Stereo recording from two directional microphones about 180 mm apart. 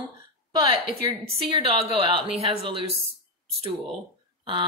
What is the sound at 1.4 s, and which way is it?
A woman's voice, 30° right (ahead or behind).